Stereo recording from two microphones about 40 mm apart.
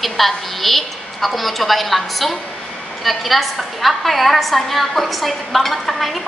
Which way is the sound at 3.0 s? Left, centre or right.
Centre.